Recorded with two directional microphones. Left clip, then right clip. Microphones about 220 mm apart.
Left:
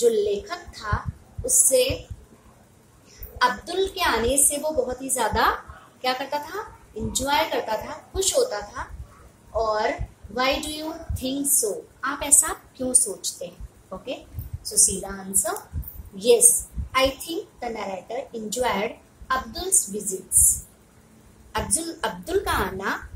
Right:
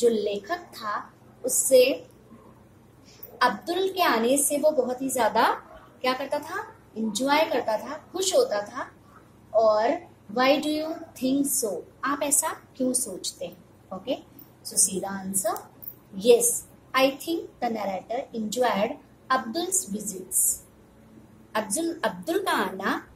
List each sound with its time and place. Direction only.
0.0 s a woman's voice: 30° left (ahead or behind)
3.3 s a child's voice: 30° left (ahead or behind)
21.5 s a woman's voice: 30° left (ahead or behind)